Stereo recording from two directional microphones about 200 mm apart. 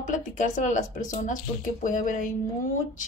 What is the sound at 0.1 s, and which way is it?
Speech, 40° left (ahead or behind).